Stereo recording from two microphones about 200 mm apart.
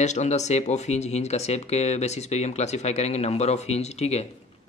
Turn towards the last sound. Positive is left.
turn(degrees=30)  # may be behind; listen again after turning